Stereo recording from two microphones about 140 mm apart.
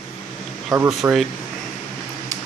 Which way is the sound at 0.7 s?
25° right (ahead or behind).